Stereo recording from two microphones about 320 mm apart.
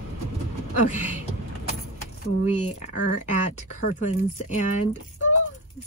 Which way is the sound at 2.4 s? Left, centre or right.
Left.